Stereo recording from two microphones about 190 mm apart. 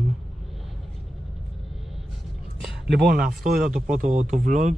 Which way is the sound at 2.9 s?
55° right (ahead or behind).